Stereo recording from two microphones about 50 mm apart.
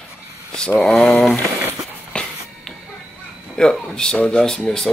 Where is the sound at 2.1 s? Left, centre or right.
Left.